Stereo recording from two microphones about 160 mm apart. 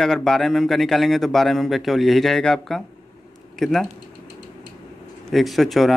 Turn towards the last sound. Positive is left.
turn(degrees=0)  # may be behind; listen again after turning